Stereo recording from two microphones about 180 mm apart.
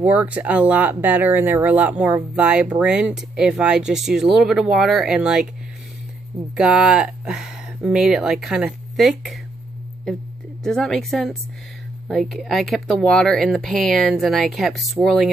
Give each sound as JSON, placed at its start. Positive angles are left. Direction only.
{"t": 0.0, "sound": "speech", "side_deg": -10}
{"t": 6.5, "sound": "speech", "side_deg": -5}
{"t": 10.6, "sound": "speech", "side_deg": 5}